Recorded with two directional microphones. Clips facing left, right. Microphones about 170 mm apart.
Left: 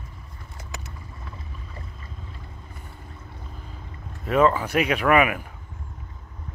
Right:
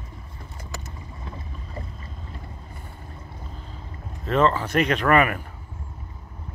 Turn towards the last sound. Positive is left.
turn(degrees=5)  # may be behind; listen again after turning